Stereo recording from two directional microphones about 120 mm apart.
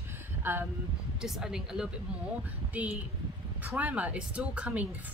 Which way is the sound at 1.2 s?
5° right (ahead or behind).